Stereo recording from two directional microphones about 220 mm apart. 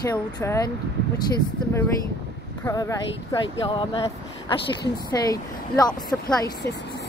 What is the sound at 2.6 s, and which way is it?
Speech, 15° left (ahead or behind).